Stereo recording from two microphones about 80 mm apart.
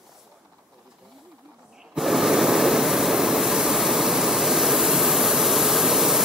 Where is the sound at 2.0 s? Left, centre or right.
Centre.